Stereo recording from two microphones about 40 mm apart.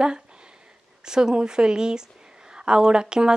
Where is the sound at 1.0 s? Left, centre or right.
Centre.